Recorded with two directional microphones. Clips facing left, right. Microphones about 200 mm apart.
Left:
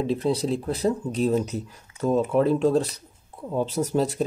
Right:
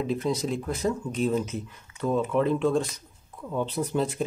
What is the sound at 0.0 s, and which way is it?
Speech, 30° left (ahead or behind).